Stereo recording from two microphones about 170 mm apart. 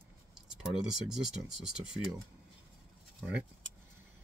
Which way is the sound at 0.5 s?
Centre (ahead or behind).